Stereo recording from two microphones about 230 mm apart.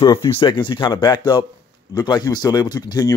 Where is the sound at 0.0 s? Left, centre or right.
Centre.